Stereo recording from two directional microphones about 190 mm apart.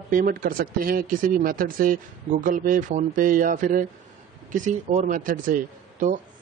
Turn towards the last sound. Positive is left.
turn(degrees=-45)  # may be behind; listen again after turning